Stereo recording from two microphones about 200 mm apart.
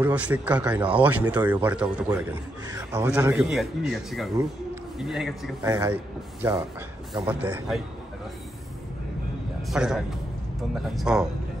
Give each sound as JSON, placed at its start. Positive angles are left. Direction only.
{"t": 0.0, "sound": "speech", "side_deg": -5}
{"t": 5.6, "sound": "speech", "side_deg": -15}
{"t": 7.2, "sound": "speech", "side_deg": -10}
{"t": 9.7, "sound": "speech", "side_deg": -5}